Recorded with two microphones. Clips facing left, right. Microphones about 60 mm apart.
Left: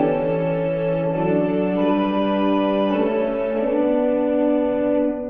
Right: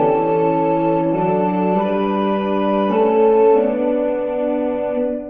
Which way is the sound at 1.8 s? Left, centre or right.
Right.